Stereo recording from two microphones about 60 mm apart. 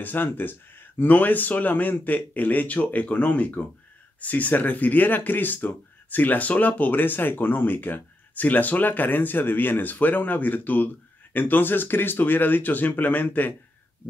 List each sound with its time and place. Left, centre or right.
0.0 s speech: left